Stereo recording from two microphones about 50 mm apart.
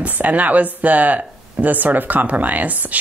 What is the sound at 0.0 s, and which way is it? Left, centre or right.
Speech, right.